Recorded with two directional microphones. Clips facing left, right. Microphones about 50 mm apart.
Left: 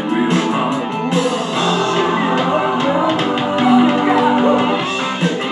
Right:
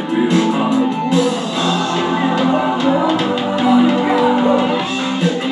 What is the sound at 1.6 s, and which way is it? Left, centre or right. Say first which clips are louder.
Music: left 2 dB; centre.